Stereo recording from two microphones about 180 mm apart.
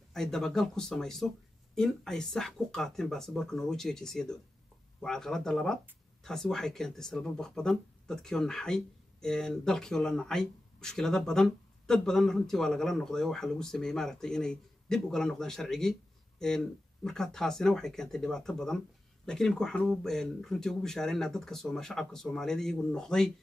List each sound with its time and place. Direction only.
0.1 s speech: 5° left (ahead or behind)